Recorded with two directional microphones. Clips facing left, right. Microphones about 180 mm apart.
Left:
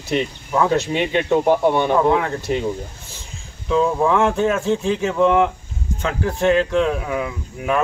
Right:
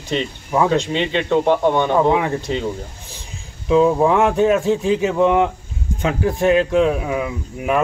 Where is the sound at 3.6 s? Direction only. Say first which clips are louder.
Right 4 dB; 15° right (ahead or behind).